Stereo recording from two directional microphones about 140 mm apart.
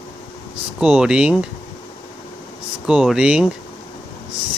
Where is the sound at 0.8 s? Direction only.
5° right (ahead or behind).